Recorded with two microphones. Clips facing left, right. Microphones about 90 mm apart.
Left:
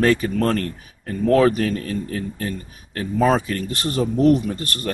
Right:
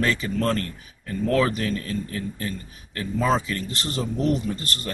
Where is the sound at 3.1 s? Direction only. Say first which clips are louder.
Left 4 dB; 60° left (ahead or behind).